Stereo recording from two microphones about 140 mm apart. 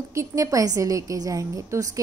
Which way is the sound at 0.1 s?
20° right (ahead or behind).